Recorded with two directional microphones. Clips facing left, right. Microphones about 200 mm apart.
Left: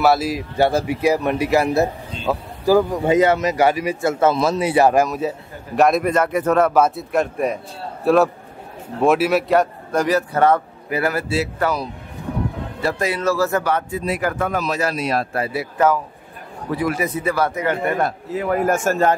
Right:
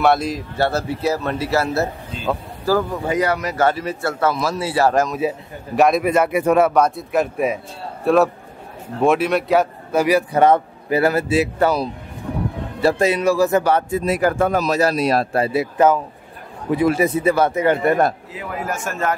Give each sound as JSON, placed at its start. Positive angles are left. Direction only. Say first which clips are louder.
{"t": 0.0, "sound": "a man's voice", "louder": "even", "side_deg": 5}
{"t": 5.8, "sound": "a man's voice", "louder": "right 1 dB", "side_deg": 0}
{"t": 6.7, "sound": "a man's voice", "louder": "even", "side_deg": 5}
{"t": 10.9, "sound": "speech", "louder": "right 4 dB", "side_deg": -30}
{"t": 12.8, "sound": "speech", "louder": "right 5 dB", "side_deg": -25}
{"t": 13.2, "sound": "a man's voice", "louder": "right 3 dB", "side_deg": -15}
{"t": 13.7, "sound": "a man's voice", "louder": "right 3 dB", "side_deg": -40}
{"t": 18.4, "sound": "a man's voice", "louder": "left 8 dB", "side_deg": 50}